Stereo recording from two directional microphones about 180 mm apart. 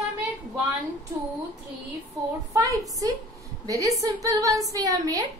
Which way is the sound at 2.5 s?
20° right (ahead or behind).